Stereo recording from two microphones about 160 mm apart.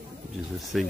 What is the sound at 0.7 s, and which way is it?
Speech, centre (ahead or behind).